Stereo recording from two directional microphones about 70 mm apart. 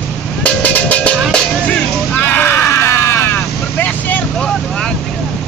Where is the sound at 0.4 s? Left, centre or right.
Centre.